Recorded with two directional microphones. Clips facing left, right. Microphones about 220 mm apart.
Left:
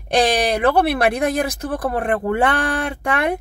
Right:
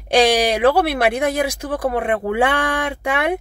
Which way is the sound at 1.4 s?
10° right (ahead or behind).